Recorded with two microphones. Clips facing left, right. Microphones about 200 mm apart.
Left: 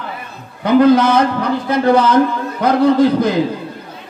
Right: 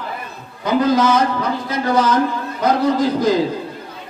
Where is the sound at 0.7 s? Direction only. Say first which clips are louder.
Left 5 dB; 60° left (ahead or behind).